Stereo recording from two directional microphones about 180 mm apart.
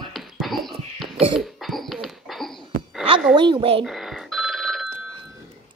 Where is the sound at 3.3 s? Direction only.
25° right (ahead or behind).